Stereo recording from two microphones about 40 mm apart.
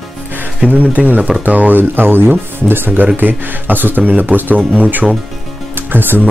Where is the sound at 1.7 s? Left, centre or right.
Right.